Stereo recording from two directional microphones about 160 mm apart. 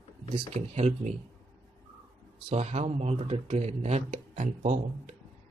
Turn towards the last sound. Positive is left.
turn(degrees=-50)  # may be behind; listen again after turning